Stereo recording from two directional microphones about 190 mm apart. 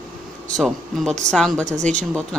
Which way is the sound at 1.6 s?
40° right (ahead or behind).